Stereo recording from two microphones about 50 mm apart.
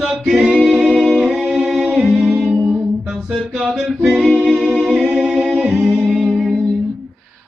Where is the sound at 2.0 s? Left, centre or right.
Right.